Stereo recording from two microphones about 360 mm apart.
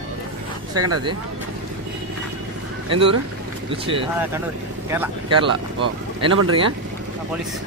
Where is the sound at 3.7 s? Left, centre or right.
Centre.